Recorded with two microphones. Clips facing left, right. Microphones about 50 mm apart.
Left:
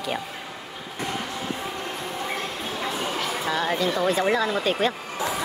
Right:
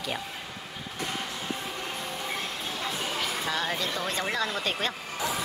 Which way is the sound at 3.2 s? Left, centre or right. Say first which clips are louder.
Left 4 dB; centre.